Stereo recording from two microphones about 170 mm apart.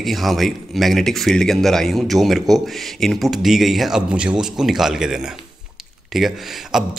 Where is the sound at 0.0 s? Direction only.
Centre (ahead or behind).